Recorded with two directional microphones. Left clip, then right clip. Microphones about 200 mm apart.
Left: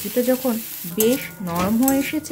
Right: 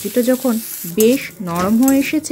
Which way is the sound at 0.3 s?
20° right (ahead or behind).